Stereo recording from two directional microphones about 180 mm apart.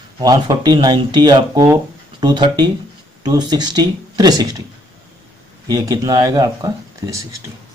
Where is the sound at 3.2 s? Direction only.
25° right (ahead or behind).